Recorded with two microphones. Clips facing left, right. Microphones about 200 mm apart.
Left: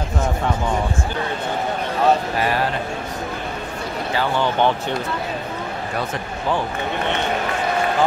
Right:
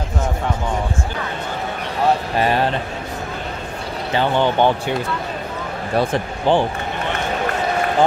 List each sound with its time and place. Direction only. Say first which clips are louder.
4.1 s speech: right 4 dB; 20° right (ahead or behind)
5.9 s speech: right 10 dB; 30° right (ahead or behind)